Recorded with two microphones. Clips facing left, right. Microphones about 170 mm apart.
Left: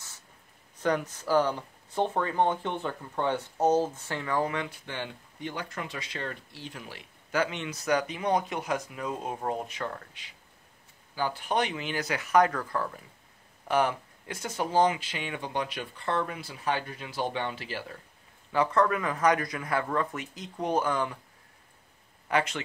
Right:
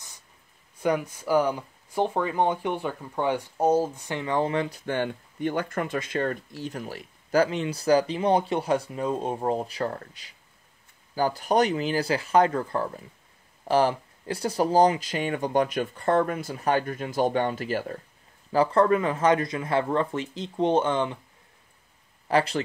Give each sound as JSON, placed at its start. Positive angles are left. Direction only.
{"t": 0.7, "sound": "speech", "side_deg": -10}
{"t": 4.8, "sound": "speech", "side_deg": -50}
{"t": 18.5, "sound": "speech", "side_deg": -35}
{"t": 22.3, "sound": "speech", "side_deg": -35}